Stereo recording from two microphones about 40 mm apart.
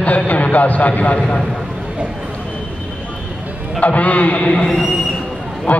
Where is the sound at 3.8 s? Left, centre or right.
Left.